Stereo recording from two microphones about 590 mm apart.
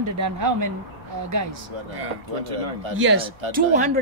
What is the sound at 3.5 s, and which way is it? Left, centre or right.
Speech, centre.